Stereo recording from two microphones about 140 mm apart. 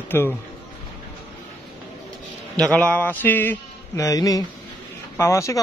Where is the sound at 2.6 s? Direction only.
5° left (ahead or behind).